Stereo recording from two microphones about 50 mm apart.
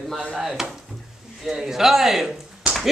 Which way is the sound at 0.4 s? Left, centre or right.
Centre.